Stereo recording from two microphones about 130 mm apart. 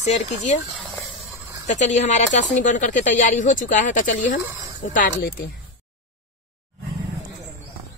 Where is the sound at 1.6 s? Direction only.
60° left (ahead or behind); by 4.3 s 85° left.